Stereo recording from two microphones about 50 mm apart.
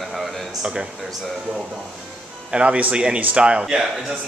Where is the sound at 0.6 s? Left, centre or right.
Right.